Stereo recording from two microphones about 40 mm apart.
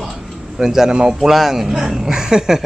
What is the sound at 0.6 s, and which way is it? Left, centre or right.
Speech, centre.